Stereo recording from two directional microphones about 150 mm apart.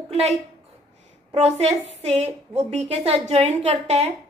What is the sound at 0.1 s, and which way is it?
A woman's voice, 45° right (ahead or behind).